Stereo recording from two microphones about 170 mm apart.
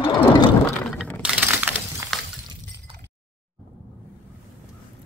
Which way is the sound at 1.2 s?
10° right (ahead or behind).